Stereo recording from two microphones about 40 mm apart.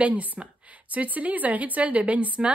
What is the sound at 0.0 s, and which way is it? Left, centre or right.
A woman's voice, right.